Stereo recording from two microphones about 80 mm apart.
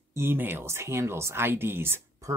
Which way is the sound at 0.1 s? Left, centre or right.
Right.